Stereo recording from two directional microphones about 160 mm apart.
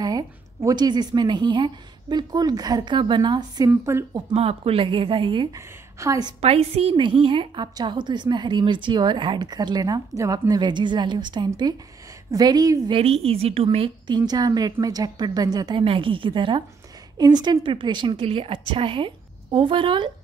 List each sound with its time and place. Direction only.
0.0 s a woman's voice: 20° right (ahead or behind)
4.3 s a woman's voice: 40° right (ahead or behind); by 6.3 s 20° right (ahead or behind)
6.4 s a woman's voice: 40° right (ahead or behind); by 12.9 s 25° right (ahead or behind)
12.9 s a woman's voice: 40° right (ahead or behind)